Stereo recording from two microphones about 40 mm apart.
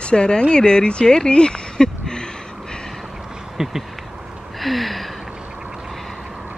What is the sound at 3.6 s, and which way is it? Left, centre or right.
Speech, centre.